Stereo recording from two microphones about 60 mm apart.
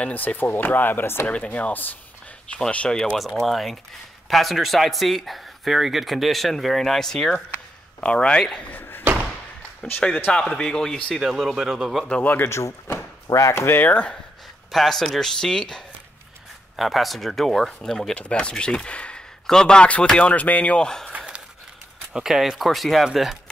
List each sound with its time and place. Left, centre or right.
0.0 s speech: left
1.4 s speech: left
3.4 s speech: centre
8.7 s slam: left
9.8 s speech: left
11.1 s speech: centre
12.2 s speech: left
12.4 s speech: left
13.7 s speech: left
14.7 s speech: centre
16.7 s speech: centre
22.1 s speech: centre